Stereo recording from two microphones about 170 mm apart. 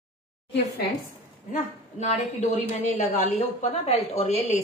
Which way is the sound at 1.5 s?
40° left (ahead or behind).